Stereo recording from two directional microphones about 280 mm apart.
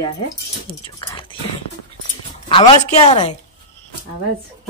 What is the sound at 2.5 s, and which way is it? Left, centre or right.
Speech, centre.